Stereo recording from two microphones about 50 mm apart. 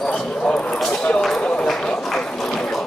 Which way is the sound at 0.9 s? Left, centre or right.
Centre.